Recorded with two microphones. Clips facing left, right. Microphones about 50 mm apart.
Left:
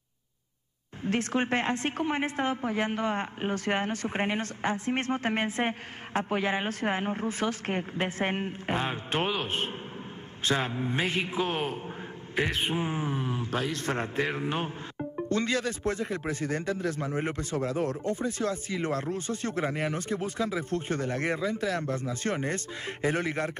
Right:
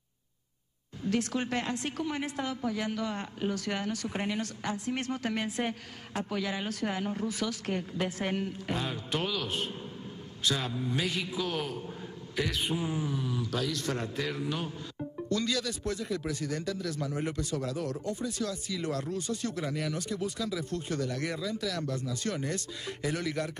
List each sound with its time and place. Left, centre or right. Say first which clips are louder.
1.0 s a man's voice: left 2 dB; left